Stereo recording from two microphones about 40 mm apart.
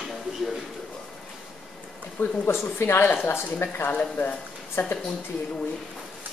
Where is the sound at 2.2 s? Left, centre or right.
Left.